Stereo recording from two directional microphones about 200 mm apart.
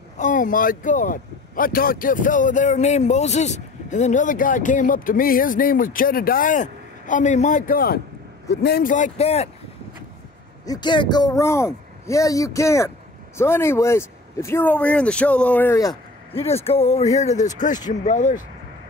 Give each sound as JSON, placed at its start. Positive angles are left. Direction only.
{"t": 0.2, "sound": "speech", "side_deg": 40}
{"t": 10.6, "sound": "speech", "side_deg": 20}
{"t": 16.6, "sound": "speech", "side_deg": 30}